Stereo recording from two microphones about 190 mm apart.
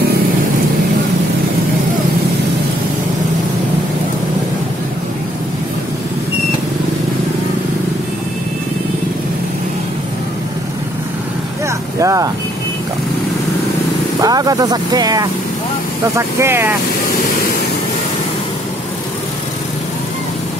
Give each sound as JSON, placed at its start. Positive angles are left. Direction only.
{"t": 11.6, "sound": "vehicle", "side_deg": -15}
{"t": 14.2, "sound": "speech", "side_deg": -20}